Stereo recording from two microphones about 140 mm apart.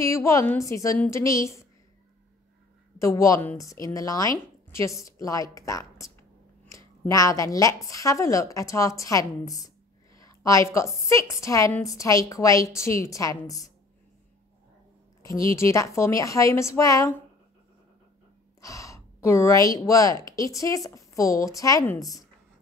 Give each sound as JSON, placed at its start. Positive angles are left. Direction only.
{"t": 0.0, "sound": "speech", "side_deg": 20}
{"t": 3.0, "sound": "speech", "side_deg": 20}
{"t": 10.1, "sound": "a sound", "side_deg": 25}
{"t": 11.1, "sound": "speech", "side_deg": 20}
{"t": 15.5, "sound": "speech", "side_deg": 20}
{"t": 18.6, "sound": "a woman's voice", "side_deg": 25}